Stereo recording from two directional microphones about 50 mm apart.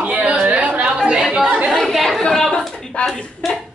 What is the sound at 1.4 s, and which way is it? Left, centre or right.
Chatter, right.